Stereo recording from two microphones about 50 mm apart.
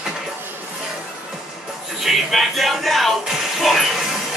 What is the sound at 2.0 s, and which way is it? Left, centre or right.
Speech, centre.